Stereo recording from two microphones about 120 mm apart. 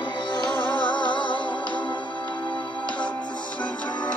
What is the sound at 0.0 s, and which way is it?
Music, 40° left (ahead or behind).